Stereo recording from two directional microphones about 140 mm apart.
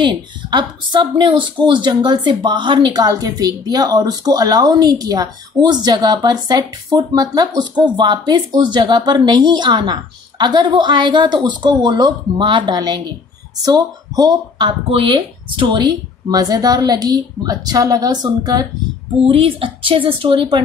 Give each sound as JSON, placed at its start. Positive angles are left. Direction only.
{"t": 0.0, "sound": "a woman's voice", "side_deg": -35}
{"t": 14.9, "sound": "a woman's voice", "side_deg": -40}
{"t": 19.2, "sound": "speech", "side_deg": -40}